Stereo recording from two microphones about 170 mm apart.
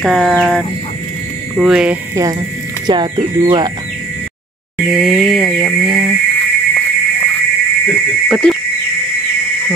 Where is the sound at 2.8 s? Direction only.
25° right (ahead or behind).